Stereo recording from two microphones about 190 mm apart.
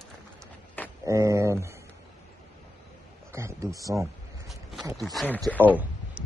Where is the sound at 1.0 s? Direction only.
15° right (ahead or behind).